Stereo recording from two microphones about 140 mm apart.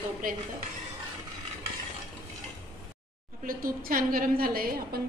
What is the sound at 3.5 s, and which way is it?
A woman's voice, 90° right.